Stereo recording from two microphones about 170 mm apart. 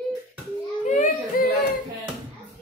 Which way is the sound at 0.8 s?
55° left (ahead or behind).